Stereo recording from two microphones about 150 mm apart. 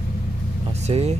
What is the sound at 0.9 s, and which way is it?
Speech, 40° right (ahead or behind).